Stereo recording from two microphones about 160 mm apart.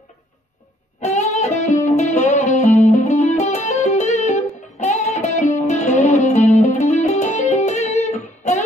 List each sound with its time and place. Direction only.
1.0 s music: 45° left (ahead or behind)